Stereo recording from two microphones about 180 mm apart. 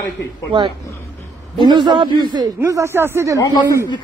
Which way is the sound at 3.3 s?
15° left (ahead or behind).